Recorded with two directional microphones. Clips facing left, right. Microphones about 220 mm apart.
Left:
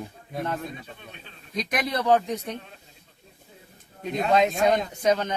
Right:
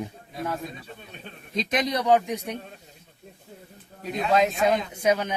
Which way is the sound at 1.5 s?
20° right (ahead or behind).